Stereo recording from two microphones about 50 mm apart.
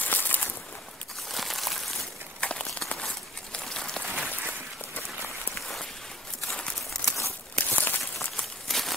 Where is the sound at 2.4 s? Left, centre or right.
Left.